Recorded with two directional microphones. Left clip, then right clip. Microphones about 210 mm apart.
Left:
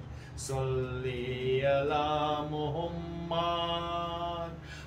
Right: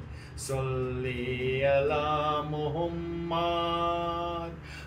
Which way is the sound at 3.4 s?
10° left (ahead or behind).